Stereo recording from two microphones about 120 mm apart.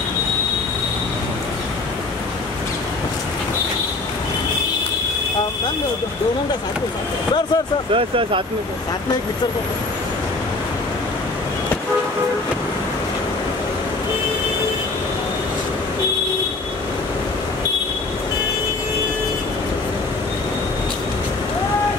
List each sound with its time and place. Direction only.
7.9 s speech: 45° right (ahead or behind)